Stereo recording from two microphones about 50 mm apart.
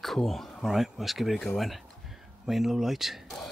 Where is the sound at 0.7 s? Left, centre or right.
Centre.